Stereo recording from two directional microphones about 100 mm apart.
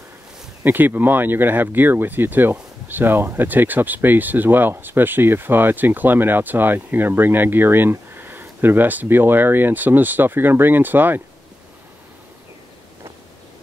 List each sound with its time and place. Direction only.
0.7 s speech: 20° right (ahead or behind)